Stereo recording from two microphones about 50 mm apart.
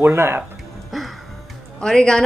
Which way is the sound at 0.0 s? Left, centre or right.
Right.